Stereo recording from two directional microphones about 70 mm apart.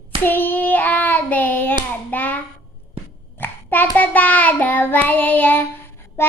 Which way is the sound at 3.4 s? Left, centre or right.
Left.